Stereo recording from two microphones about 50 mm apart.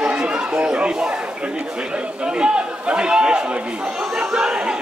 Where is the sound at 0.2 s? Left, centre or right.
Centre.